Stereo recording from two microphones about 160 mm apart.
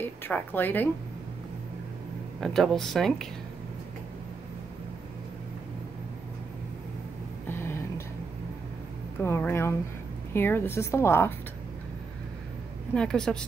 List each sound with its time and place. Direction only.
0.0 s a woman's voice: 10° left (ahead or behind)
2.4 s speech: centre (ahead or behind)
7.4 s a sound: 15° left (ahead or behind)
9.2 s a woman's voice: 15° left (ahead or behind)
12.9 s speech: 5° left (ahead or behind)